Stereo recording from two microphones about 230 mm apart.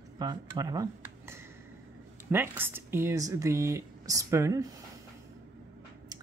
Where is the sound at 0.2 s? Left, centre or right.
Centre.